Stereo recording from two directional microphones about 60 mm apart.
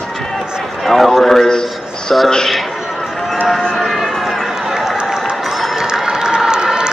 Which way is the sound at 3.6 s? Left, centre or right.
Centre.